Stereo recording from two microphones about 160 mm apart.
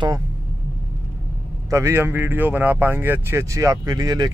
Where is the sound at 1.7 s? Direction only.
15° right (ahead or behind).